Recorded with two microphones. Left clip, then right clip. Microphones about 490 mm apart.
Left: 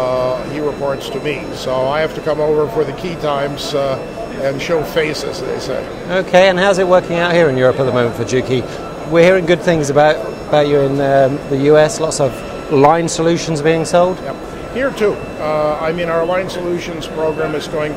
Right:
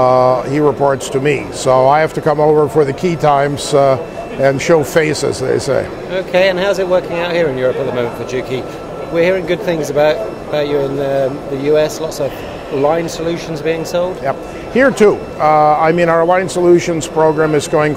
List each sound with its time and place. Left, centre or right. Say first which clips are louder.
0.0 s a sound: right 6 dB; right
0.8 s speech: right 5 dB; right
6.1 s a man's voice: left 2 dB; left
14.8 s speech: right 6 dB; right